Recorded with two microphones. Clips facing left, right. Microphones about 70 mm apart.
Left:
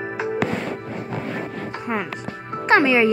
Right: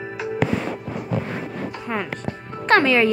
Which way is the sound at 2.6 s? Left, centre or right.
Centre.